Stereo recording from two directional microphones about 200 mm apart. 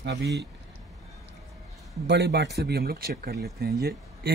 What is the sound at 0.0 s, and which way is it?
Speech, 55° right (ahead or behind).